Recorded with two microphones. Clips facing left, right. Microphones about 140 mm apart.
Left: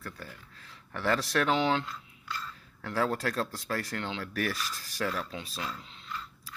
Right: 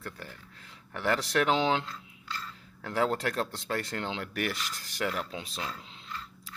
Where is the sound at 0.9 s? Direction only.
15° right (ahead or behind).